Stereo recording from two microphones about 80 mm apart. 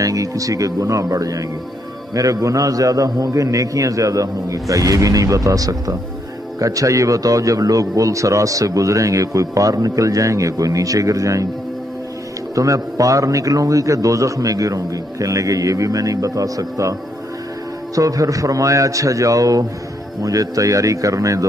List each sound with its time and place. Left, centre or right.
0.0 s a man's voice: right
12.5 s a man's voice: right
17.9 s a man's voice: right